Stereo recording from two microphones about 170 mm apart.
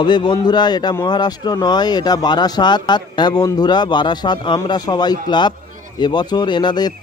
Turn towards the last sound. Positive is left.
turn(degrees=25)  # may be behind; listen again after turning